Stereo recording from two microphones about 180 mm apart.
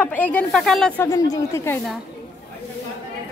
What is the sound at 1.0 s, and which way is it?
Speech, 20° left (ahead or behind).